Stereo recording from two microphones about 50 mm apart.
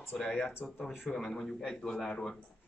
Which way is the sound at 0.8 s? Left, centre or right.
Centre.